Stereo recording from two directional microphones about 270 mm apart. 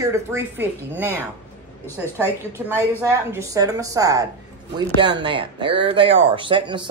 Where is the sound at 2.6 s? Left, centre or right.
Centre.